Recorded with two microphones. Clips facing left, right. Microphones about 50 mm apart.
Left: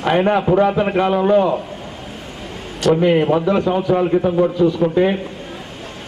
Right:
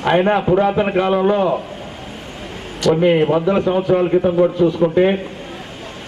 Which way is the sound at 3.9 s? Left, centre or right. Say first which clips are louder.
Right 2 dB; centre.